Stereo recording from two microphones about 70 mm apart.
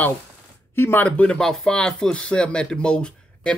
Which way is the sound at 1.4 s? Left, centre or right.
Centre.